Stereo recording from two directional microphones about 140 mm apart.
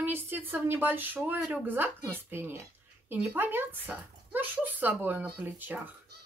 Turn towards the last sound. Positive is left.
turn(degrees=-10)  # may be behind; listen again after turning